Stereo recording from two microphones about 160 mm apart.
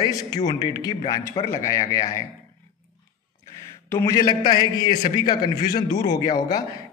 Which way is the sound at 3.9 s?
20° left (ahead or behind).